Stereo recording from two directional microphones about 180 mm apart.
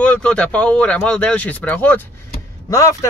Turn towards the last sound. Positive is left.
turn(degrees=15)  # may be behind; listen again after turning